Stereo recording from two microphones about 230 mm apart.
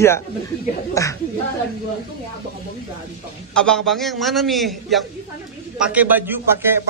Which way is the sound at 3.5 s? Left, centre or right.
Centre.